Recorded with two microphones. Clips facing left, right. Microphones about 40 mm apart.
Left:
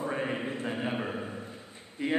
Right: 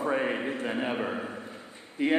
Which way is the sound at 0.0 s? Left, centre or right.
Centre.